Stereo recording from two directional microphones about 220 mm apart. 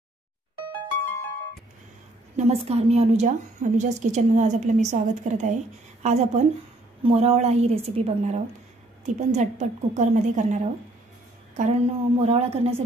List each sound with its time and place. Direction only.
2.3 s a woman's voice: 30° right (ahead or behind)